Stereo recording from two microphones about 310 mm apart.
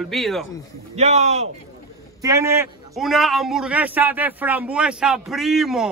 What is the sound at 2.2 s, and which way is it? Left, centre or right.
A man's voice, centre.